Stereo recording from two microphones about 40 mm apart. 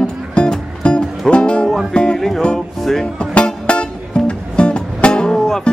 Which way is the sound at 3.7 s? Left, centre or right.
Left.